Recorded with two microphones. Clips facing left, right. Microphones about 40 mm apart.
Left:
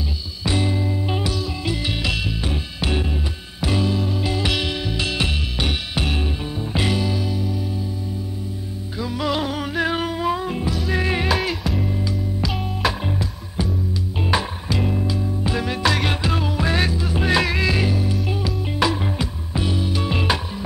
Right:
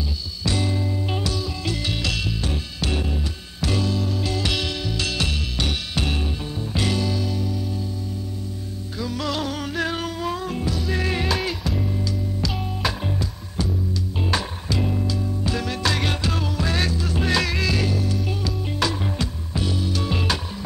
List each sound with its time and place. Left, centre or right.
0.4 s music: left
8.9 s music: centre
11.3 s music: centre
11.8 s music: centre